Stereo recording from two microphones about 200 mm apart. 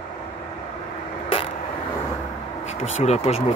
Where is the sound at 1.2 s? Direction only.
30° left (ahead or behind).